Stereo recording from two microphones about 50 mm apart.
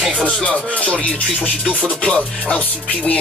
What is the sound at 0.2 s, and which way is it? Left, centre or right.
Music, left.